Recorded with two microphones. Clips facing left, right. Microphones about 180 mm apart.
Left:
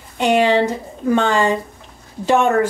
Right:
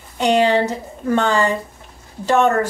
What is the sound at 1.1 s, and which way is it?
A woman's voice, 20° left (ahead or behind).